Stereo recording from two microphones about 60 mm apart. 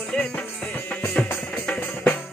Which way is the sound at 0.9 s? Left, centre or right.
Left.